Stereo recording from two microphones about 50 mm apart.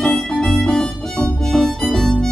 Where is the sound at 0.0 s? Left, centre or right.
Centre.